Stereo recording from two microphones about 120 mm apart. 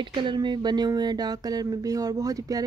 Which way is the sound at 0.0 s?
40° right (ahead or behind).